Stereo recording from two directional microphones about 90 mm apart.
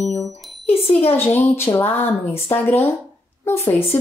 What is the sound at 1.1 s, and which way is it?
A woman's voice, 25° left (ahead or behind).